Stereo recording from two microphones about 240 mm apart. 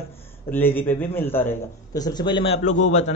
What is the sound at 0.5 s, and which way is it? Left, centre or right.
A man's voice, centre.